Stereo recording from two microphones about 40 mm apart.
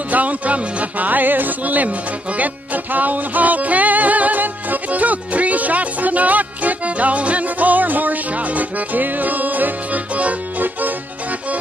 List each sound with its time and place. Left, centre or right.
0.1 s music: right
10.6 s music: right